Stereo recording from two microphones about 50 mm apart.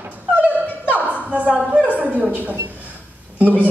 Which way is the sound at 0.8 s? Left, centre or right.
Right.